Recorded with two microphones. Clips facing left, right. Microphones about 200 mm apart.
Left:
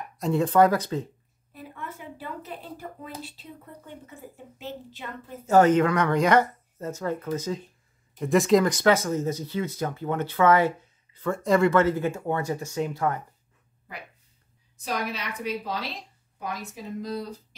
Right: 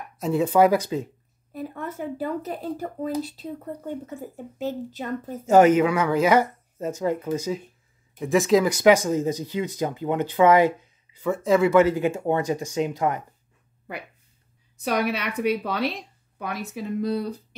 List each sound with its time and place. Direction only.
0.2 s speech: 5° right (ahead or behind)
1.5 s speech: 40° right (ahead or behind)
5.5 s speech: 10° right (ahead or behind)
8.2 s speech: centre (ahead or behind); by 13.2 s 15° right (ahead or behind)
14.8 s speech: 70° right (ahead or behind)